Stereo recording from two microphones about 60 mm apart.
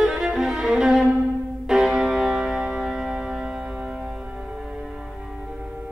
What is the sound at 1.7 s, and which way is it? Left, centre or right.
Music, centre.